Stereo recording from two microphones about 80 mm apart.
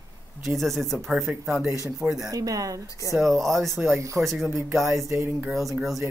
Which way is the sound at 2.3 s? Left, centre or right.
Right.